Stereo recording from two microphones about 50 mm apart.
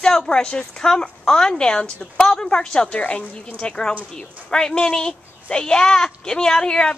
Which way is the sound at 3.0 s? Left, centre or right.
Left.